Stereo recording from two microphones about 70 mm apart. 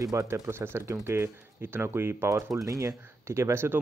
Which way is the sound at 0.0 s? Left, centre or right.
Right.